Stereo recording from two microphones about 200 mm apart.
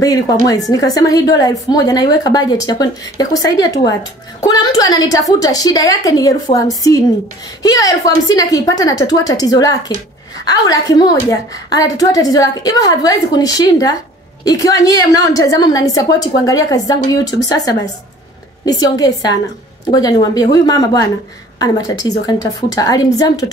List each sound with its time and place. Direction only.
0.7 s a woman's voice: 20° left (ahead or behind)